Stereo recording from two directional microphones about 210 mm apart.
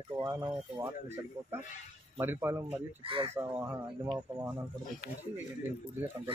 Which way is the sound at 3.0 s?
25° right (ahead or behind).